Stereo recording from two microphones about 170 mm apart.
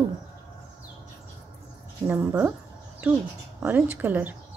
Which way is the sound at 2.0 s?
10° right (ahead or behind).